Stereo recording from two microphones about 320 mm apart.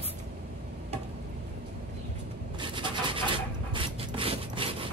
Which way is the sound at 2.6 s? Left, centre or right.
Centre.